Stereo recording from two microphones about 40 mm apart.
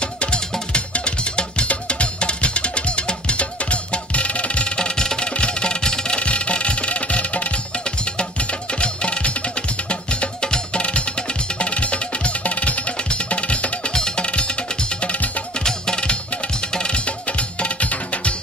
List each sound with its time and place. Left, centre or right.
0.0 s music: left
15.6 s music: left